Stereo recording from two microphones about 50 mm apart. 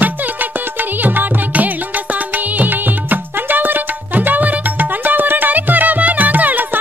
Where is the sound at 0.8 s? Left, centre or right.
Right.